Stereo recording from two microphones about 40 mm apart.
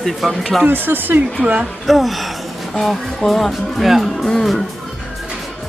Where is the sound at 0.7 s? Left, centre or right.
Right.